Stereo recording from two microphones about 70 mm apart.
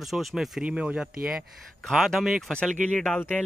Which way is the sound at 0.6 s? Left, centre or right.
Centre.